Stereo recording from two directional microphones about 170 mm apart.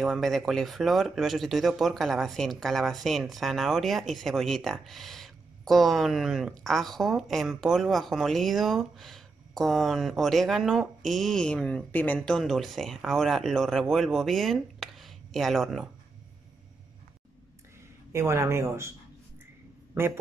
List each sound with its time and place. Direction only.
0.0 s speech: centre (ahead or behind)
18.1 s a man's voice: 15° right (ahead or behind)